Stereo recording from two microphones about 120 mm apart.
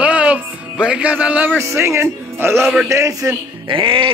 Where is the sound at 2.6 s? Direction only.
5° right (ahead or behind).